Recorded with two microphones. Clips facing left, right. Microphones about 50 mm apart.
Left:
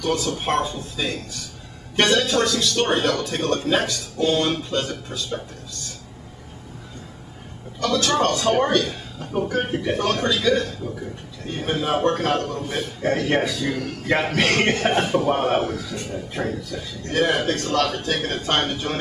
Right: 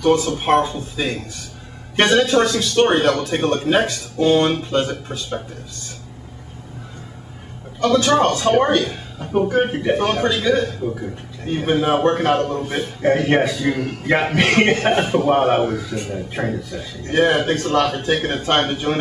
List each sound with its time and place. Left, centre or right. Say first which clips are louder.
0.0 s a man's voice: right 6 dB; right
7.8 s a man's voice: right 5 dB; right